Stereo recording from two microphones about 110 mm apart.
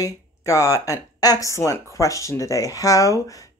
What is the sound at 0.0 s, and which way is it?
Speech, 30° left (ahead or behind).